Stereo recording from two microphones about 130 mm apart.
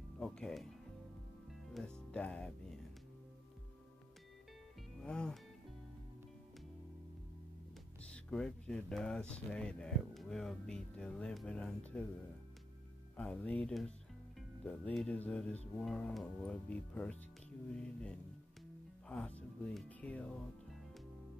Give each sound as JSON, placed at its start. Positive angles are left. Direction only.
{"t": 0.2, "sound": "speech", "side_deg": 5}
{"t": 5.0, "sound": "speech", "side_deg": 5}
{"t": 8.0, "sound": "speech", "side_deg": 5}
{"t": 13.1, "sound": "speech", "side_deg": 10}
{"t": 19.0, "sound": "speech", "side_deg": 10}